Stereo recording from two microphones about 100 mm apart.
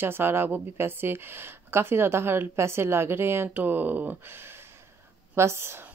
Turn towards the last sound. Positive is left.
turn(degrees=-25)  # may be behind; listen again after turning